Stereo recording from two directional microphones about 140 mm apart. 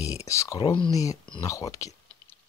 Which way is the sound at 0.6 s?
40° left (ahead or behind).